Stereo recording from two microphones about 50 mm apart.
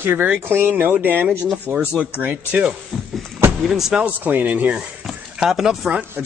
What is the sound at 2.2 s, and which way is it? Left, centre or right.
Speech, right.